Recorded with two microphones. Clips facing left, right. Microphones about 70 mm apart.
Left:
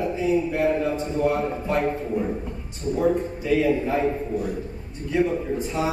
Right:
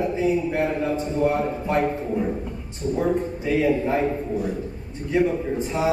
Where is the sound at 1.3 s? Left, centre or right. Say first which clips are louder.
Right 1 dB; right.